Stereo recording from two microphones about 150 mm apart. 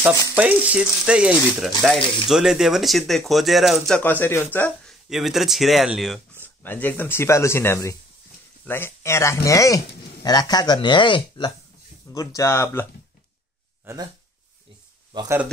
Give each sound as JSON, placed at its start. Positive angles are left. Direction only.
{"t": 0.4, "sound": "speech", "side_deg": -10}
{"t": 4.0, "sound": "speech", "side_deg": 15}
{"t": 5.1, "sound": "speech", "side_deg": 0}
{"t": 6.3, "sound": "speech", "side_deg": 15}